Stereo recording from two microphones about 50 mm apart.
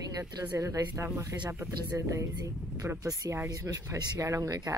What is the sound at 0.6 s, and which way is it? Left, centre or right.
Speech, right.